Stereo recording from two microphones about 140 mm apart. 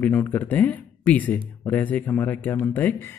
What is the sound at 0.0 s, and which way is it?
Speech, 10° left (ahead or behind).